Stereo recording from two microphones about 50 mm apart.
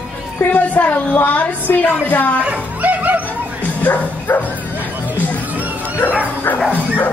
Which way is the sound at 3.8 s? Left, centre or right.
Left.